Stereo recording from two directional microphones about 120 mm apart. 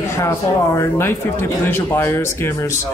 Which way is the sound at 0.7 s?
20° left (ahead or behind).